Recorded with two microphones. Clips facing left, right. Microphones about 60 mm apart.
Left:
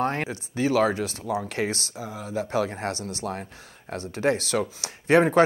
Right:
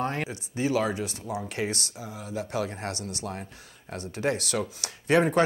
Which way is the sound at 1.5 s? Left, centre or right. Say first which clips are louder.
Left 3 dB; left.